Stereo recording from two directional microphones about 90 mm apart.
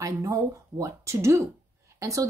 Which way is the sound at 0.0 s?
40° right (ahead or behind).